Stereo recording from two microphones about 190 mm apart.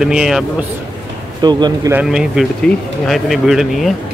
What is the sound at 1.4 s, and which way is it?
Speech, 20° right (ahead or behind).